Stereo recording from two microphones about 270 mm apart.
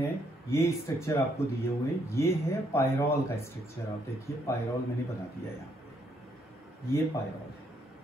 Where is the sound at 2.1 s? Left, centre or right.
Centre.